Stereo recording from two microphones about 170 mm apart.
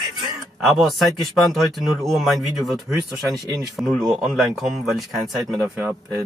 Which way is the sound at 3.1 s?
20° right (ahead or behind).